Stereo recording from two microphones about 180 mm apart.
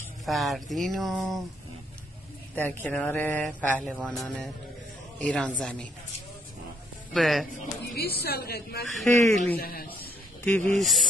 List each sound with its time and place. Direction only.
0.2 s speech: centre (ahead or behind)
2.5 s speech: 10° left (ahead or behind)
7.2 s speech: centre (ahead or behind)
7.9 s a woman's voice: 60° left (ahead or behind)
8.8 s speech: centre (ahead or behind)
9.6 s a man's voice: 55° left (ahead or behind)
9.9 s snake: 10° left (ahead or behind)